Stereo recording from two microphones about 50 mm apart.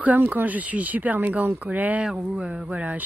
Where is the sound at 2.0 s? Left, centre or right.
Right.